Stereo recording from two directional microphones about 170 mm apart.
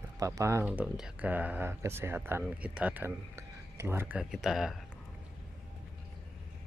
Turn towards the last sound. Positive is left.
turn(degrees=0)  # may be behind; listen again after turning